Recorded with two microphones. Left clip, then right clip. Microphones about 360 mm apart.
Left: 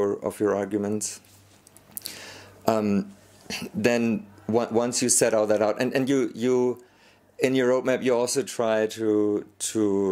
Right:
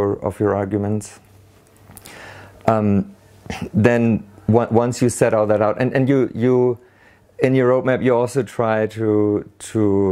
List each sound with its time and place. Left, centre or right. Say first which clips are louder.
0.0 s speech: right 5 dB; right